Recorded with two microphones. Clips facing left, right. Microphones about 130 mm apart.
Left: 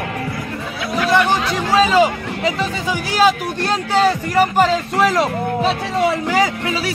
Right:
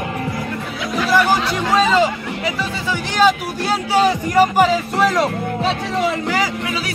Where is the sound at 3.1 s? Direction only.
Centre (ahead or behind).